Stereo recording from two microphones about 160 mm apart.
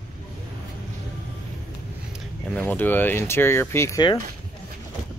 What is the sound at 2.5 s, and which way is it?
Speech, 10° left (ahead or behind).